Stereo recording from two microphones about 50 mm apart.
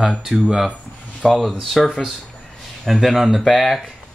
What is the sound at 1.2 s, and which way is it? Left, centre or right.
Speech, centre.